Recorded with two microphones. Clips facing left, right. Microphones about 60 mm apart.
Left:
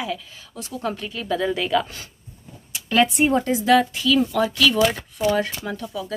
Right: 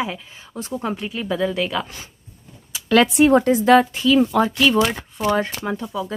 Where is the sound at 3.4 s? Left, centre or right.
Right.